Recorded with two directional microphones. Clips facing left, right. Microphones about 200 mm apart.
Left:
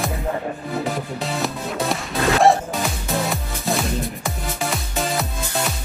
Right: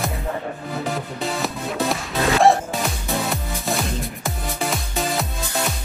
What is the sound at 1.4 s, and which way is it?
Music, centre (ahead or behind).